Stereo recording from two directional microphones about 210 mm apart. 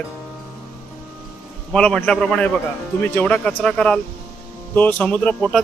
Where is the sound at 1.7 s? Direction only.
5° left (ahead or behind).